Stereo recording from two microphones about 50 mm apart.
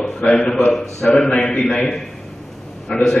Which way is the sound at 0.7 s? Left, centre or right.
Centre.